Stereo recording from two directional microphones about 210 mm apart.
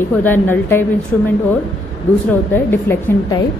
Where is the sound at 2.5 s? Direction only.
10° left (ahead or behind).